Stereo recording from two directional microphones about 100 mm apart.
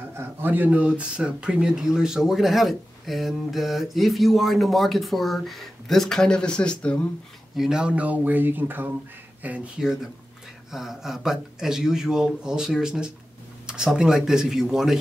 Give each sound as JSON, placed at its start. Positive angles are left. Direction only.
{"t": 0.2, "sound": "speech", "side_deg": -20}
{"t": 7.5, "sound": "speech", "side_deg": -5}